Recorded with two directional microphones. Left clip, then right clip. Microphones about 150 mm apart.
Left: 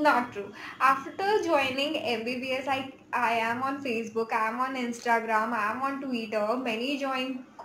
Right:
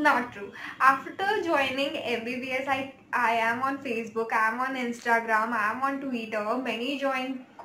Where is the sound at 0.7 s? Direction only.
15° left (ahead or behind).